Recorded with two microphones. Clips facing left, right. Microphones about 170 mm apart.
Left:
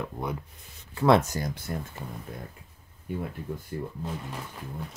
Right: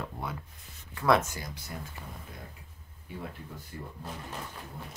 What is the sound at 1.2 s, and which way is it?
Speech, 45° left (ahead or behind).